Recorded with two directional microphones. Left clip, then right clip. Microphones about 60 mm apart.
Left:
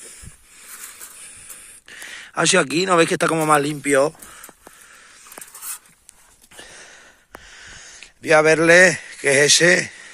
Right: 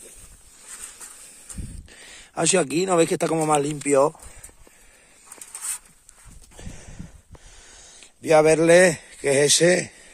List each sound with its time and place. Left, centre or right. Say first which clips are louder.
2.0 s a sound: left 10 dB; centre
2.3 s speech: left 4 dB; centre
3.3 s speech: left 4 dB; left
3.8 s speech: left 1 dB; centre
6.7 s wheeze: left 4 dB; centre
8.2 s a man's voice: left 2 dB; centre